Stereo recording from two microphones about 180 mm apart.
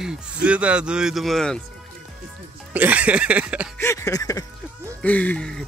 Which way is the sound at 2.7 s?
10° right (ahead or behind).